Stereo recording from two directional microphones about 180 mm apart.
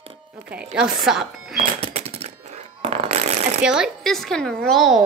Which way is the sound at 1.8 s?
35° right (ahead or behind).